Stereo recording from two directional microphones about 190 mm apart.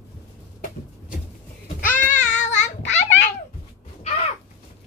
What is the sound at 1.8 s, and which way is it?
Child singing, 40° left (ahead or behind).